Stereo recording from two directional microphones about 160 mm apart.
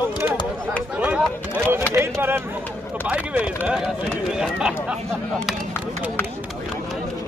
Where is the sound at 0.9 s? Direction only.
10° right (ahead or behind).